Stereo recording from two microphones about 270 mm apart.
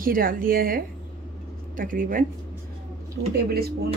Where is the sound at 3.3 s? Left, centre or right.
Right.